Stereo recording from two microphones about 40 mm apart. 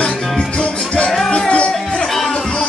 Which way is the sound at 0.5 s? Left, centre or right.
Left.